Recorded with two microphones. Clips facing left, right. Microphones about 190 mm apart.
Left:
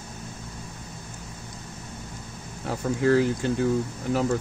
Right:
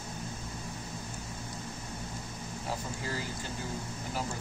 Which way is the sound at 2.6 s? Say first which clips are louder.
Left 15 dB; 70° left (ahead or behind).